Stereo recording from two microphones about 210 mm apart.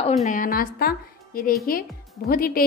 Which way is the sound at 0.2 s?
35° left (ahead or behind).